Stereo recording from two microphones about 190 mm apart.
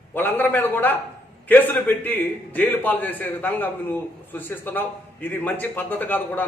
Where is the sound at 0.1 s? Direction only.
10° left (ahead or behind).